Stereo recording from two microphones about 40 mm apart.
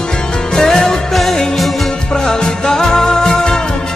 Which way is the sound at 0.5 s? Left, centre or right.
Centre.